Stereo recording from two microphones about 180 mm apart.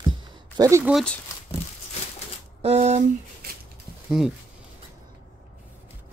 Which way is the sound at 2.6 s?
35° right (ahead or behind).